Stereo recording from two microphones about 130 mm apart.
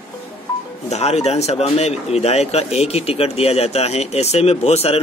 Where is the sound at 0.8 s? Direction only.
55° left (ahead or behind).